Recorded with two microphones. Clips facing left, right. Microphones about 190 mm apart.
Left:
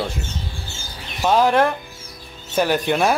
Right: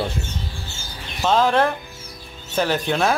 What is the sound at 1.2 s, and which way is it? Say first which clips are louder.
Speech: left 2 dB; 15° left (ahead or behind).